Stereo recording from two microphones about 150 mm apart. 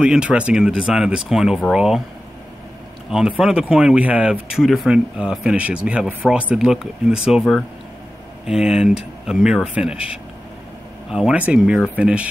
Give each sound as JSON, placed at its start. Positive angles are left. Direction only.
{"t": 0.0, "sound": "speech", "side_deg": -5}
{"t": 3.1, "sound": "speech", "side_deg": -5}
{"t": 8.5, "sound": "speech", "side_deg": -5}
{"t": 11.1, "sound": "speech", "side_deg": -5}